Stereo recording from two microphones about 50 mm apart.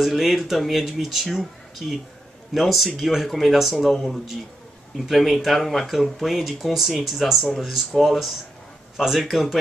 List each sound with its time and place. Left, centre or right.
0.0 s speech: centre